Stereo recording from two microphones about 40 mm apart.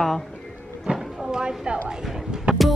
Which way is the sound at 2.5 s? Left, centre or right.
Right.